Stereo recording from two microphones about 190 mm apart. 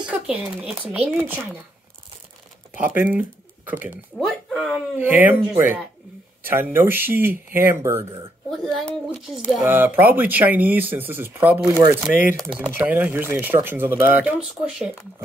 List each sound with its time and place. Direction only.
0.0 s speech: 5° right (ahead or behind)
2.8 s speech: 10° right (ahead or behind)
8.0 s speech: 30° right (ahead or behind)
9.1 s speech: 5° right (ahead or behind)